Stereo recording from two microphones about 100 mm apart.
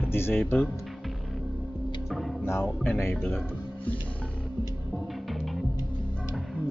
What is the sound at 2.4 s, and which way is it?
Speech, 25° left (ahead or behind).